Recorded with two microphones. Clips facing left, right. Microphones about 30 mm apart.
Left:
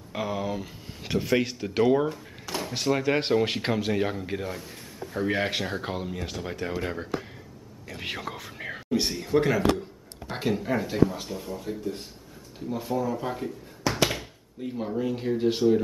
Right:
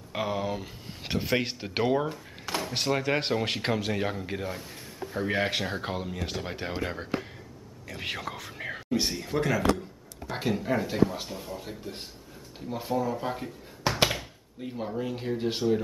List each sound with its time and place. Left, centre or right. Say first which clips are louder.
0.1 s a man's voice: even; centre
1.5 s speech: left 4 dB; right
1.9 s speech: left 3 dB; centre
2.5 s door: right 1 dB; right
2.9 s speech: left 4 dB; centre
6.2 s a man's voice: even; centre
6.5 s speech: left 3 dB; right
7.9 s whispering: even; centre
9.3 s a man's voice: left 5 dB; centre
10.3 s speech: left 1 dB; centre